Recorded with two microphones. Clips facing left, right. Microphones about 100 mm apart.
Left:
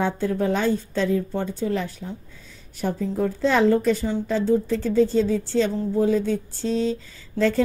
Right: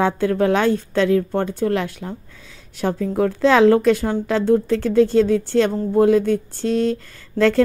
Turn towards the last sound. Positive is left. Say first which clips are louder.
# right 5 dB
turn(degrees=-70)  # may be behind; listen again after turning